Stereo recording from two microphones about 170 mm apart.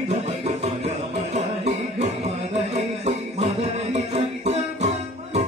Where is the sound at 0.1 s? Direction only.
40° right (ahead or behind).